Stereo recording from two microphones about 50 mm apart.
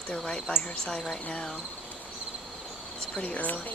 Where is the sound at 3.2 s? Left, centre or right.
Left.